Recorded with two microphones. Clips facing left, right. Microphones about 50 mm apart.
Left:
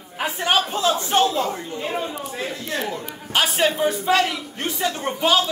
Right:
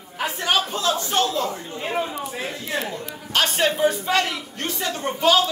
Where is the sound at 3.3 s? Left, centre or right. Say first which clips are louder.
Left 1 dB; centre.